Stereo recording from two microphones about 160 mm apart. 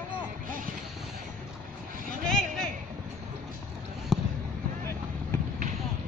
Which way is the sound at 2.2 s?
5° left (ahead or behind).